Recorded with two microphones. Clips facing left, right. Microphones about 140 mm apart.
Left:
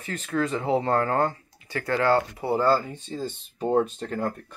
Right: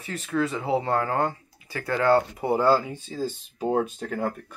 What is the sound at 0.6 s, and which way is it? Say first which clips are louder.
Speech: left 1 dB; 15° right (ahead or behind).